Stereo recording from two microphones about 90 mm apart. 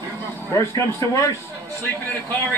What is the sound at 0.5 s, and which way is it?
A man's voice, 35° left (ahead or behind).